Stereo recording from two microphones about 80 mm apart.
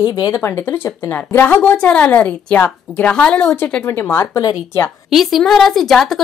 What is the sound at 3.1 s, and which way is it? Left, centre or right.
Speech, centre.